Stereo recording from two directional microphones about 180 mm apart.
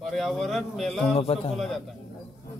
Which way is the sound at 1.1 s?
35° left (ahead or behind).